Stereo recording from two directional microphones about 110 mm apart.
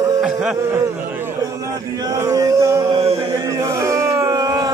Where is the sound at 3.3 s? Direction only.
30° right (ahead or behind).